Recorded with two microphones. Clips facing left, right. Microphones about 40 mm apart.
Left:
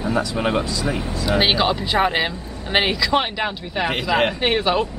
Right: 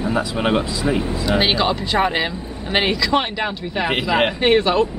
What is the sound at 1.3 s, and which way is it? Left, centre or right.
Speech, centre.